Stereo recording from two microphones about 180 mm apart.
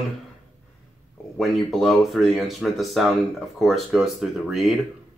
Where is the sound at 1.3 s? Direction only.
Centre (ahead or behind).